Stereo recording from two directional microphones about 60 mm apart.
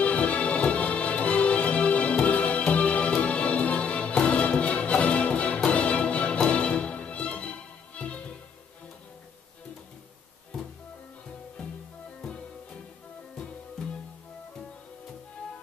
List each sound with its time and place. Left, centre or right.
0.0 s music: left
10.5 s music: centre